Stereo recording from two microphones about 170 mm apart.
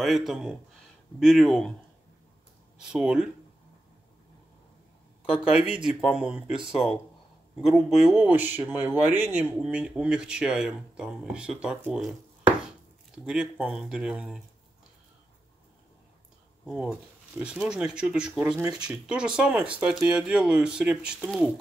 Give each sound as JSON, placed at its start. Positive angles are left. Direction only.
{"t": 0.0, "sound": "speech", "side_deg": 0}
{"t": 2.8, "sound": "speech", "side_deg": -5}
{"t": 5.4, "sound": "speech", "side_deg": -5}
{"t": 16.6, "sound": "speech", "side_deg": -5}